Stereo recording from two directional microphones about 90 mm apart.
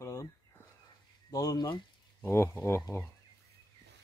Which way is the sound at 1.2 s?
40° left (ahead or behind).